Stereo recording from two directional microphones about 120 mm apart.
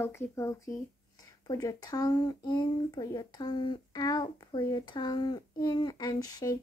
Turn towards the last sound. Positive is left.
turn(degrees=30)  # may be behind; listen again after turning